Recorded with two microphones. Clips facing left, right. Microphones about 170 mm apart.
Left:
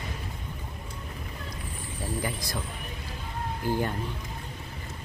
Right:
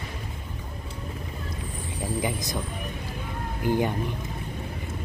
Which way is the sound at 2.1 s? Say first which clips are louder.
Right 4 dB; 20° right (ahead or behind).